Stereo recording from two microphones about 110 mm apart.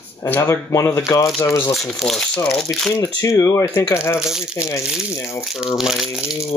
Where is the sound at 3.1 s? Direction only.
30° left (ahead or behind).